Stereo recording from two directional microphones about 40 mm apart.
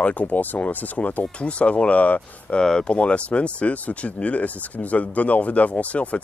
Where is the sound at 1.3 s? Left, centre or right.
Left.